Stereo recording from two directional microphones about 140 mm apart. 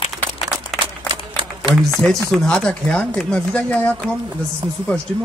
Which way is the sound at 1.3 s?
35° right (ahead or behind).